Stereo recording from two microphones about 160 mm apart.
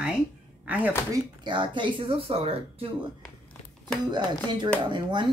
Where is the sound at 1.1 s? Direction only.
30° right (ahead or behind).